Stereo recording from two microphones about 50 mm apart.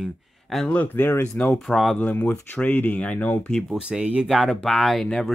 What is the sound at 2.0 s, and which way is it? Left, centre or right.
Speech, left.